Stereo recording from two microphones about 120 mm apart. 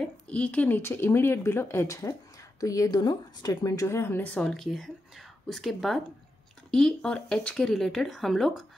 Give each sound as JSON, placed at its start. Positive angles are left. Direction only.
{"t": 0.0, "sound": "speech", "side_deg": 10}